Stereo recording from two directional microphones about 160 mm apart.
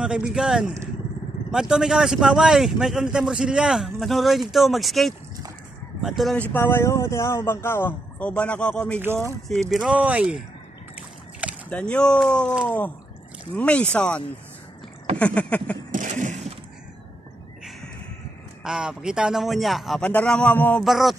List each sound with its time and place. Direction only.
0.0 s speech: 5° right (ahead or behind)
11.7 s speech: 5° left (ahead or behind)
15.9 s a sound: 50° right (ahead or behind)
18.6 s speech: 5° right (ahead or behind); by 20.8 s 10° left (ahead or behind)
20.8 s speech: centre (ahead or behind)